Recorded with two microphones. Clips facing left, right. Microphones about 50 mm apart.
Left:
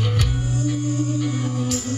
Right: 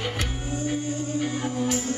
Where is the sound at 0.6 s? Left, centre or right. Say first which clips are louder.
Left 5 dB; right.